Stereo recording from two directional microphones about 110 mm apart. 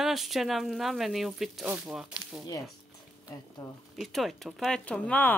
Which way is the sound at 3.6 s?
30° left (ahead or behind).